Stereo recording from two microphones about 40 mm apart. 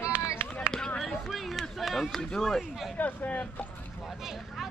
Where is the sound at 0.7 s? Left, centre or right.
Left.